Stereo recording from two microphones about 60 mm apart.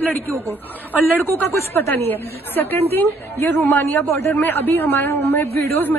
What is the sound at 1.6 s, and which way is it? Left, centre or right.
A woman's voice, left.